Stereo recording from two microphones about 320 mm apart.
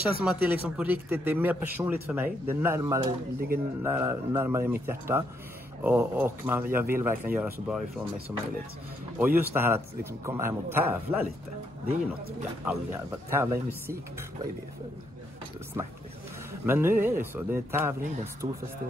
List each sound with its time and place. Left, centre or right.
0.2 s speech: centre
3.3 s speech: right
3.8 s a man's voice: centre
12.6 s a man's voice: centre
16.6 s a man's voice: centre